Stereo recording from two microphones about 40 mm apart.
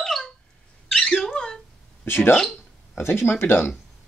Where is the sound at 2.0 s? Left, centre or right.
Left.